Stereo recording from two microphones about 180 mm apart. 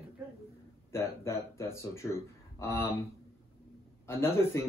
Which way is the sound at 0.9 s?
15° left (ahead or behind).